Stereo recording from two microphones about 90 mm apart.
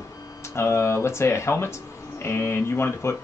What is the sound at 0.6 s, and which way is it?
Speech, 30° left (ahead or behind).